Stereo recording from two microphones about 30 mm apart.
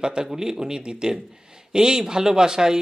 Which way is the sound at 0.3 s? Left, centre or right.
Centre.